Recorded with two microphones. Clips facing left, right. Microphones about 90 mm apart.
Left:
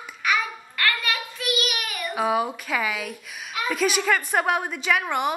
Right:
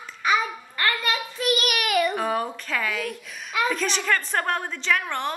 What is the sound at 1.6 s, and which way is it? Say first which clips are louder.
Child singing: right 7 dB; 70° right (ahead or behind).